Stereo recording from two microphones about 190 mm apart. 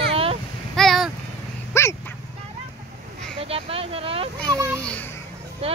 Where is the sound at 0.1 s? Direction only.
30° right (ahead or behind).